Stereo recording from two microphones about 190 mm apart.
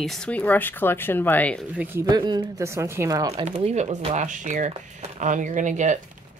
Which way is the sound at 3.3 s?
30° right (ahead or behind).